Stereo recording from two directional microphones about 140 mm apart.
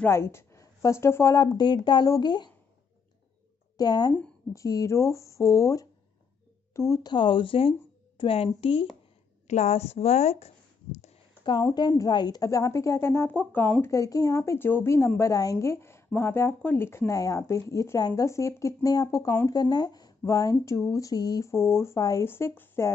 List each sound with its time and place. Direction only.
0.0 s speech: 20° left (ahead or behind)
3.7 s a woman's voice: 30° left (ahead or behind); by 11.1 s 50° left (ahead or behind)
11.6 s speech: 30° left (ahead or behind)